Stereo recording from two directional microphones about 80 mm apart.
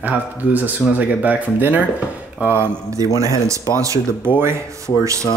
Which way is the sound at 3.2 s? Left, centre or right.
Right.